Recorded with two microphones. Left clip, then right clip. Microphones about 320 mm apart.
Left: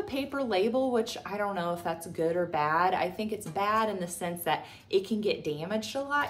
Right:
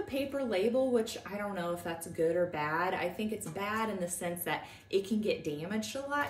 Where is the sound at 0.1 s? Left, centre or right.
Centre.